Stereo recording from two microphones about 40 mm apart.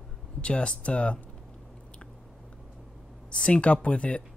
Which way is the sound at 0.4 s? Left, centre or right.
Left.